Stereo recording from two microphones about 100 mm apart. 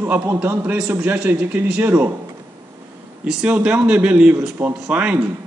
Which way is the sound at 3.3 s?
10° right (ahead or behind).